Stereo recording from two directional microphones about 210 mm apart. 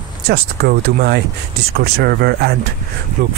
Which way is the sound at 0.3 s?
50° right (ahead or behind).